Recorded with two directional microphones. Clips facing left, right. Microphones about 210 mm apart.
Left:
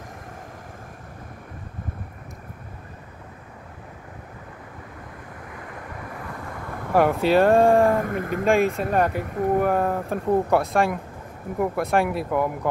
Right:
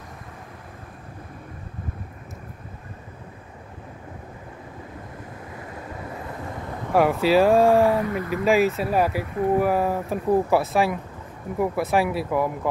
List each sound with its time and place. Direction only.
5.5 s vehicle: 25° right (ahead or behind)
6.9 s speech: centre (ahead or behind)
7.9 s speech: 50° left (ahead or behind)
8.5 s speech: 5° right (ahead or behind)